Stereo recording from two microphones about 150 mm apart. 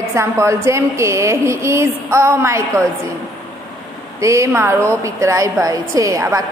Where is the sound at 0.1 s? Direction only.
20° right (ahead or behind).